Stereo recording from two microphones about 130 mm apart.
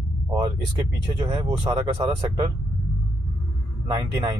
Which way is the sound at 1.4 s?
35° right (ahead or behind).